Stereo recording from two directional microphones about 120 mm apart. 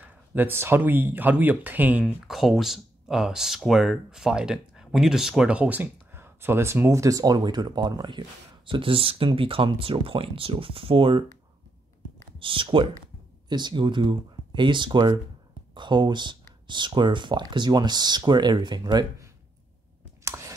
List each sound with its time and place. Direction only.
0.0 s speech: 15° right (ahead or behind)
2.2 s speech: centre (ahead or behind); by 11.2 s 45° right (ahead or behind)
12.4 s speech: 45° right (ahead or behind)
20.2 s chewing: 25° right (ahead or behind)